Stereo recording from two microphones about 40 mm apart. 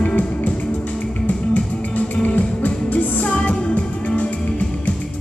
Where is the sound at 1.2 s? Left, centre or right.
Left.